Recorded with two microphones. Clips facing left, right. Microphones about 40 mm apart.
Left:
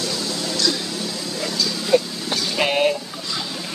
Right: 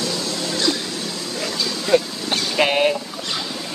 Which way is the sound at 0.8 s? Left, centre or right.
Centre.